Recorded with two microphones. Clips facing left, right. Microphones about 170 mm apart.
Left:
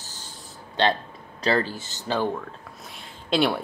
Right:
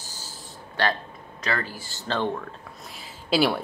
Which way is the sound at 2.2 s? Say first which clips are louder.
Left 1 dB; centre (ahead or behind).